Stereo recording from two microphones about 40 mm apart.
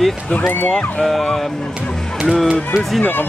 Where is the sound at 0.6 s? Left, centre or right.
Left.